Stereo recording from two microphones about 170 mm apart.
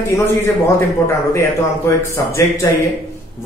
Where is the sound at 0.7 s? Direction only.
15° left (ahead or behind).